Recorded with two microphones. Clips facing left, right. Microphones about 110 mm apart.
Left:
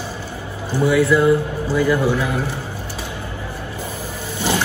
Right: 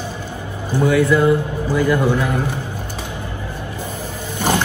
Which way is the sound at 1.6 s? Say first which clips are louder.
Right 2 dB; 15° right (ahead or behind).